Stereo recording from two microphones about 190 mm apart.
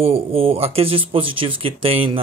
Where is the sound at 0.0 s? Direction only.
30° right (ahead or behind).